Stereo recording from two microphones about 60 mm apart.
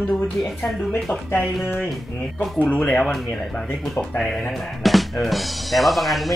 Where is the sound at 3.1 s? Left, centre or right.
Centre.